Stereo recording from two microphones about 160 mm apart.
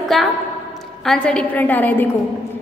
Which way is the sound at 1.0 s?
5° left (ahead or behind).